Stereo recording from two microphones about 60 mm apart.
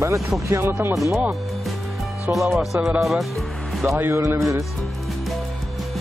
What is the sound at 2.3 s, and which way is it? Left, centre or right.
Speech, centre.